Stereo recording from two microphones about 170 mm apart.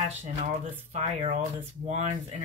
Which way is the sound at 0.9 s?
40° right (ahead or behind).